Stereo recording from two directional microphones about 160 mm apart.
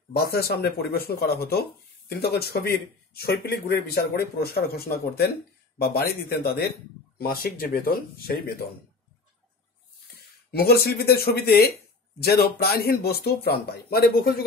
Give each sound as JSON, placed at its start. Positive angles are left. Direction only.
{"t": 0.1, "sound": "speech", "side_deg": 75}
{"t": 10.5, "sound": "speech", "side_deg": 75}